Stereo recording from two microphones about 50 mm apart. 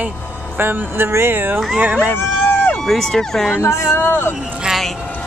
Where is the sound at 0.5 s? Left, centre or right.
Right.